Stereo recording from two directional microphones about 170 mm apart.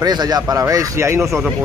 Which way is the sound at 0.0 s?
25° right (ahead or behind).